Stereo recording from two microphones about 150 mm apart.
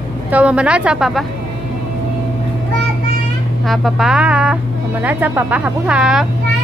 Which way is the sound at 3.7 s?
Centre (ahead or behind).